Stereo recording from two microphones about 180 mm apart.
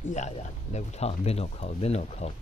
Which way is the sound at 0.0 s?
40° left (ahead or behind).